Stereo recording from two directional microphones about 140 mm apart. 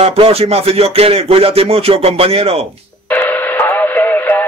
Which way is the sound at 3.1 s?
15° left (ahead or behind).